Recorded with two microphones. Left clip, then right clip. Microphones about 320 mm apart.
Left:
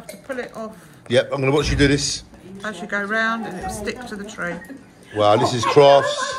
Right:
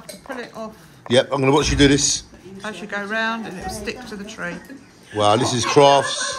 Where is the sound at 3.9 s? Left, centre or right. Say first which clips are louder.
Left 1 dB; right.